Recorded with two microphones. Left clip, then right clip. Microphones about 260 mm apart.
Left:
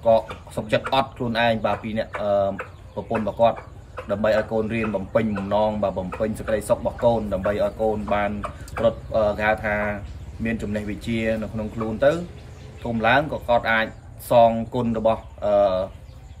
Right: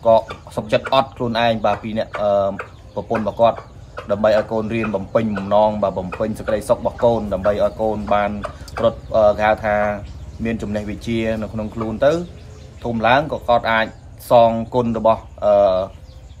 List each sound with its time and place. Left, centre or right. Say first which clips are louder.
0.6 s speech: right 5 dB; centre